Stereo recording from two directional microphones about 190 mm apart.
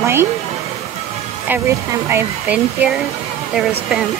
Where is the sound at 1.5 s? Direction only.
15° right (ahead or behind).